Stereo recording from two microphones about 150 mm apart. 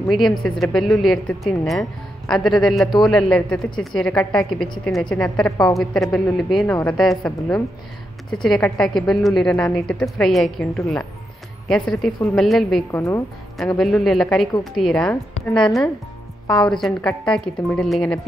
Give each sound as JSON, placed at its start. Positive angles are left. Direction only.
{"t": 0.4, "sound": "a woman's voice", "side_deg": 0}
{"t": 12.9, "sound": "speech", "side_deg": 20}
{"t": 13.7, "sound": "speech", "side_deg": 0}